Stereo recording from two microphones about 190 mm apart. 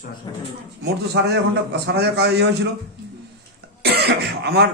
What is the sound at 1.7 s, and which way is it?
Speech, 60° right (ahead or behind).